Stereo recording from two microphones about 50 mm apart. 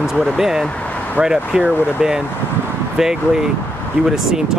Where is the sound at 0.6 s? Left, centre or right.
Left.